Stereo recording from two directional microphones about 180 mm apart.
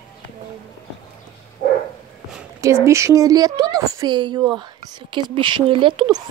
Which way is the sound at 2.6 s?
15° right (ahead or behind).